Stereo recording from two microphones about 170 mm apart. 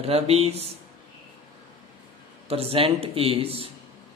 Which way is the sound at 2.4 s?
35° right (ahead or behind).